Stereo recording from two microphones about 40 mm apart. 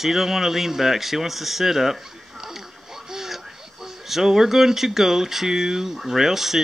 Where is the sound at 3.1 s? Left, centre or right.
Centre.